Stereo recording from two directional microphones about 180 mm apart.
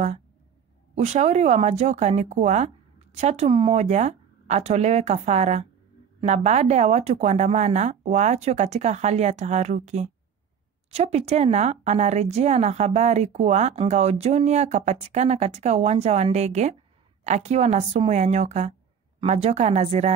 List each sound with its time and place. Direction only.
0.9 s a woman's voice: 40° right (ahead or behind)